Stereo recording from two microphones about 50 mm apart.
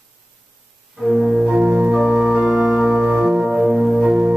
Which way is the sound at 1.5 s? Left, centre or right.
Centre.